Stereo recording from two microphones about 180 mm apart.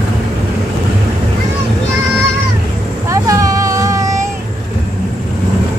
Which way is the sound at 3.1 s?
20° right (ahead or behind).